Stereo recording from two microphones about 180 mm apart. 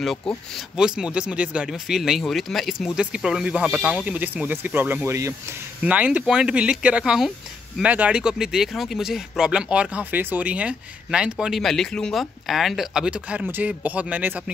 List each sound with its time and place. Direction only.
0.7 s speech: 5° right (ahead or behind)